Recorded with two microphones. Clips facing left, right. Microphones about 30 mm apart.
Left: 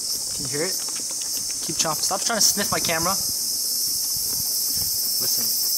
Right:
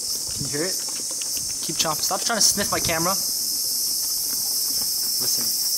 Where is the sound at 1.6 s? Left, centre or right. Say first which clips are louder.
Right 1 dB; centre.